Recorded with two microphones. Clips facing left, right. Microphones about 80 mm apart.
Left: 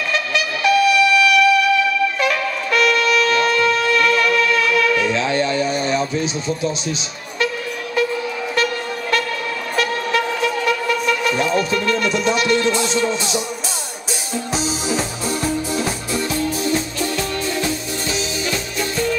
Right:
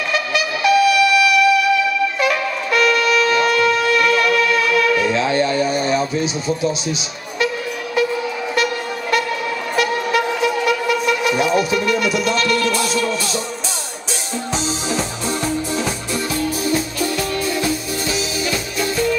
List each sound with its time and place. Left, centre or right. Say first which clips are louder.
0.1 s music: right 2 dB; centre
12.4 s music: left 1 dB; left
14.5 s music: even; centre
16.3 s music: right 1 dB; centre